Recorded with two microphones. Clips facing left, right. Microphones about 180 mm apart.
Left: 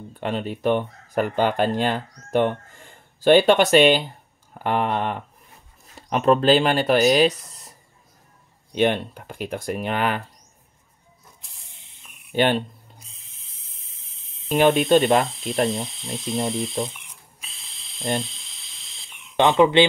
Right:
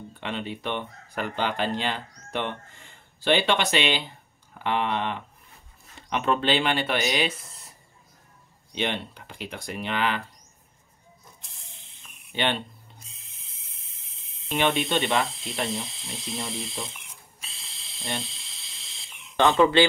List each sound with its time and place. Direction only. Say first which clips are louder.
0.2 s speech: left 8 dB; 45° left (ahead or behind)
8.7 s speech: left 9 dB; 50° left (ahead or behind)
12.3 s speech: left 7 dB; 45° left (ahead or behind)
13.0 s a sound: even; centre (ahead or behind)
14.5 s speech: left 8 dB; 45° left (ahead or behind)
15.2 s speech: left 8 dB; centre (ahead or behind)
16.9 s a sound: left 1 dB; centre (ahead or behind)
19.3 s squawk: left 3 dB; 20° left (ahead or behind)